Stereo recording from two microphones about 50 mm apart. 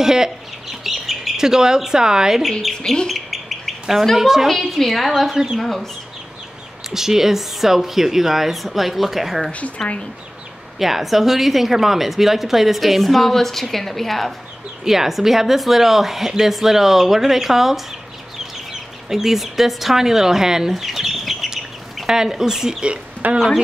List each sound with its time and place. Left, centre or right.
0.0 s squawk: centre
1.4 s a woman's voice: centre
2.7 s owl: centre
3.1 s bird: centre
4.0 s a woman's voice: centre
6.9 s a woman's voice: centre
9.8 s owl: centre
10.8 s a woman's voice: centre
23.2 s speech: right